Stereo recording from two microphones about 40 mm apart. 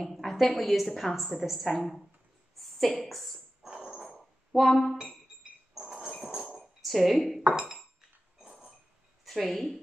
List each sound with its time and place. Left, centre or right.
0.0 s a woman's voice: centre
2.5 s a sound: centre
3.0 s a woman's voice: centre
4.5 s speech: right
5.8 s a sound: centre
6.1 s dog: centre
6.4 s chink: centre
8.4 s a sound: centre
9.2 s a woman's voice: centre